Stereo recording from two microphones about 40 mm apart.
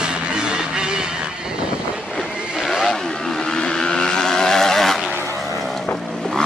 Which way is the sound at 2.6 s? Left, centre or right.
Centre.